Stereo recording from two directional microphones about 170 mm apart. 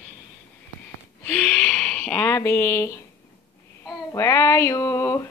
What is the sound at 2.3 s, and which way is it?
Speech, 15° left (ahead or behind).